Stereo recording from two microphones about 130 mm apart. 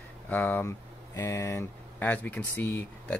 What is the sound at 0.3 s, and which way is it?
Speech, 15° left (ahead or behind).